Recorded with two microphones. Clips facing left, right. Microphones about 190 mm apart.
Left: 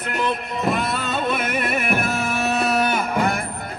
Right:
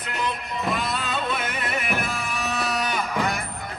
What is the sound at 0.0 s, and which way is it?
Music, 55° left (ahead or behind).